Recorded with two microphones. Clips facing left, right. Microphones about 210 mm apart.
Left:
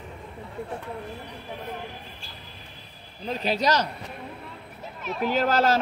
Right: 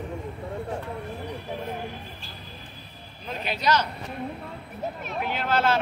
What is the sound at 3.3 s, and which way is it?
Speech, 40° left (ahead or behind).